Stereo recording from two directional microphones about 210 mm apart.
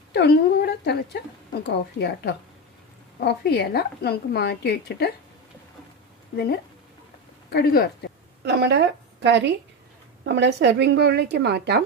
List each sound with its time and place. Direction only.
0.1 s a woman's voice: 50° left (ahead or behind)
7.5 s a woman's voice: 50° left (ahead or behind)
8.4 s a woman's voice: 55° right (ahead or behind)